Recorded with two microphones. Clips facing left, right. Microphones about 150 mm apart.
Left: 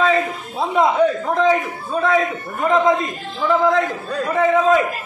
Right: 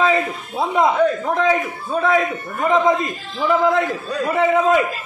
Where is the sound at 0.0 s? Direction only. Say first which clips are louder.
Even; 5° right (ahead or behind).